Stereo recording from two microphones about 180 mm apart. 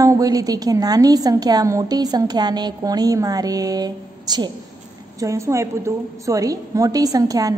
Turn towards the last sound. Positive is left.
turn(degrees=-20)  # may be behind; listen again after turning